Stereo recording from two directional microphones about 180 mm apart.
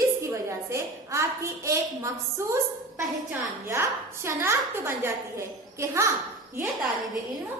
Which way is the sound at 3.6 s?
15° right (ahead or behind).